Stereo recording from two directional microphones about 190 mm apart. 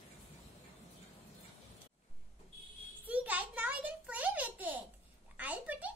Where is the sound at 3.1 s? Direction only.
10° right (ahead or behind).